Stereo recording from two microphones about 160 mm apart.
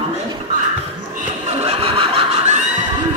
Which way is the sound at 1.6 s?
35° right (ahead or behind).